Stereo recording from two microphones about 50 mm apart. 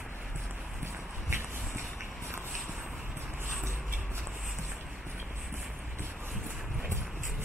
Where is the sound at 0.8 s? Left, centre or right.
Right.